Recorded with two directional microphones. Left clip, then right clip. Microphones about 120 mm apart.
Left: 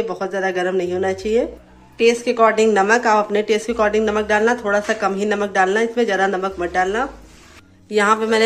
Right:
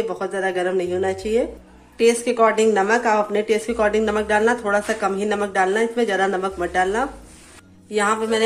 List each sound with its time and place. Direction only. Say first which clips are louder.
0.0 s speech: left 2 dB; 10° left (ahead or behind)
2.0 s speech: left 2 dB; centre (ahead or behind)
7.9 s a woman's voice: left 4 dB; 20° left (ahead or behind)